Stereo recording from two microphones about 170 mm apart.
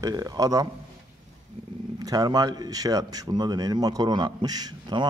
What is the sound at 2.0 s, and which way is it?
Speech, 20° right (ahead or behind).